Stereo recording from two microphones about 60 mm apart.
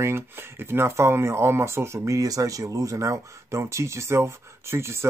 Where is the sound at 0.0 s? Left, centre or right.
Right.